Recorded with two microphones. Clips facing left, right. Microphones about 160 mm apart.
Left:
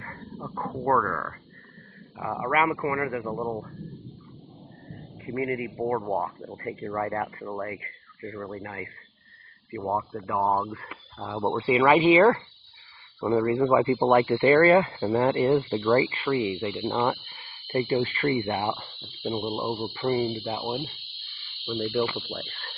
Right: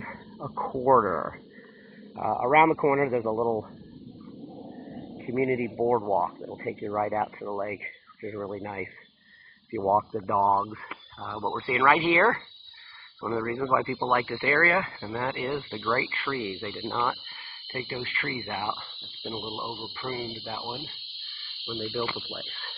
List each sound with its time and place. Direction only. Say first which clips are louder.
0.0 s dog: even; 20° right (ahead or behind)
0.7 s speech: right 4 dB; 20° right (ahead or behind)
4.9 s speech: right 3 dB; 20° right (ahead or behind)
10.4 s speech: left 2 dB; centre (ahead or behind)
11.1 s speech: left 5 dB; 20° left (ahead or behind)
16.1 s speech: left 6 dB; 15° left (ahead or behind)